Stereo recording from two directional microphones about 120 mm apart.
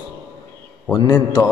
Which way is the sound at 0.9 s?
30° left (ahead or behind).